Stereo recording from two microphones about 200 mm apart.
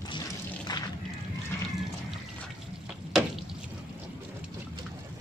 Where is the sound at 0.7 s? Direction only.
20° left (ahead or behind).